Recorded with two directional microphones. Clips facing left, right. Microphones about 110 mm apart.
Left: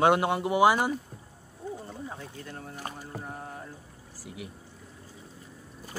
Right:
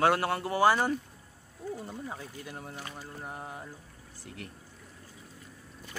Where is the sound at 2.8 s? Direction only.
45° left (ahead or behind).